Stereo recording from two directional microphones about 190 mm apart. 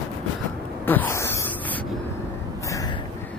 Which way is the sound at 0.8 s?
10° left (ahead or behind).